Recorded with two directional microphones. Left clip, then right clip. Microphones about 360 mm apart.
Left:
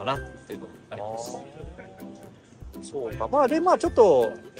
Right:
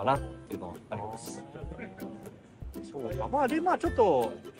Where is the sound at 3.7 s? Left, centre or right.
Centre.